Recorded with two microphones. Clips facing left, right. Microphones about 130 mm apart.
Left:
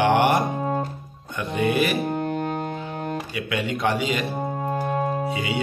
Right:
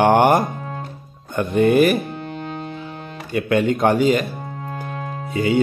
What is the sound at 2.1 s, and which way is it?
Music, 50° left (ahead or behind).